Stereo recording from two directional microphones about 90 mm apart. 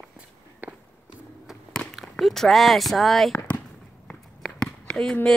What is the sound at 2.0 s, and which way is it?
Speech, centre (ahead or behind).